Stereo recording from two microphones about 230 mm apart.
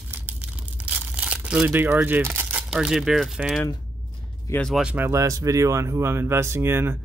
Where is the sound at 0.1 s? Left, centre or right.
Centre.